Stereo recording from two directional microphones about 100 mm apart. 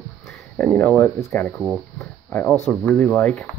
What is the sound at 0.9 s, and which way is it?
Speech, 25° left (ahead or behind).